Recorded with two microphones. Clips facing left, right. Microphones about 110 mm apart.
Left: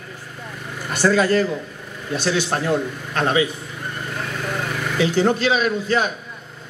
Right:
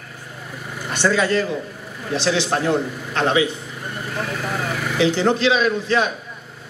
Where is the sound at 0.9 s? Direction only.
45° left (ahead or behind).